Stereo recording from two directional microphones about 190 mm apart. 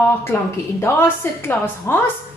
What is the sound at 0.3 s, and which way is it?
A woman's voice, 15° left (ahead or behind).